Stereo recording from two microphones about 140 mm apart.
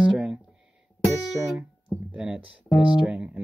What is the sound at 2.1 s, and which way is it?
Speech, 5° right (ahead or behind).